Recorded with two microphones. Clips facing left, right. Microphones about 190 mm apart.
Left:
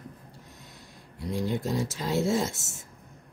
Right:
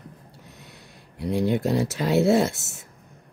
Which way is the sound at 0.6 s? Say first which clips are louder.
Right 2 dB; 65° right (ahead or behind).